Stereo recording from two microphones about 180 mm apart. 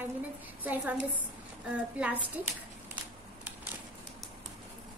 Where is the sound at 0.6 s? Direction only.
10° right (ahead or behind).